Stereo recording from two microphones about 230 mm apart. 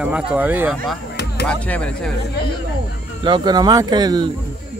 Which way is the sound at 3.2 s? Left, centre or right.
Centre.